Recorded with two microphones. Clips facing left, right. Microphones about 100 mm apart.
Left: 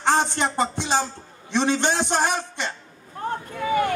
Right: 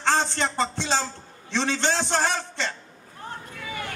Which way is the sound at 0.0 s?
15° left (ahead or behind).